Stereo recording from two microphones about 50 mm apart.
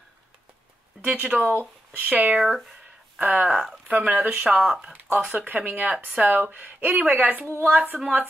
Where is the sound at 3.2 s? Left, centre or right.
Right.